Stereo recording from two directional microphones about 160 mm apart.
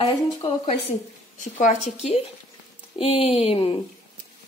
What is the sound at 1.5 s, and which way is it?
Speech, 50° left (ahead or behind).